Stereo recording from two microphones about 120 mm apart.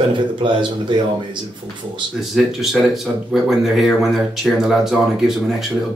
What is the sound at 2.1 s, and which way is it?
Speech, centre (ahead or behind).